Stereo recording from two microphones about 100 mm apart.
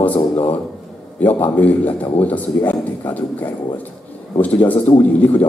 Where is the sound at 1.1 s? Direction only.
15° left (ahead or behind).